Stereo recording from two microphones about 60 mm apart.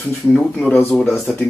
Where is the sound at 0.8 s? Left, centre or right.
Left.